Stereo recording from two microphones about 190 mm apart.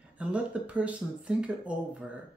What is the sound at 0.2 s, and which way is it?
Speech, 5° right (ahead or behind).